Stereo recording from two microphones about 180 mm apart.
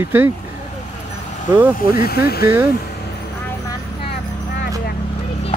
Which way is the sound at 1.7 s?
55° left (ahead or behind).